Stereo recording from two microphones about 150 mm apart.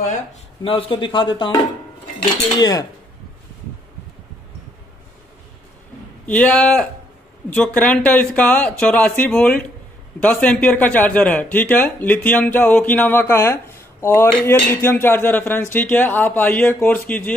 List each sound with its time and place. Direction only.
0.7 s speech: 35° left (ahead or behind)
2.6 s speech: 25° left (ahead or behind)
6.2 s speech: 10° left (ahead or behind)